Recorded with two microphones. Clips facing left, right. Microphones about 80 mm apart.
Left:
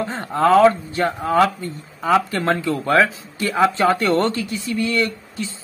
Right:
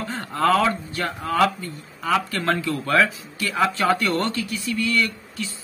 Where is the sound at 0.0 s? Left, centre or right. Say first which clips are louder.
Left 4 dB; left.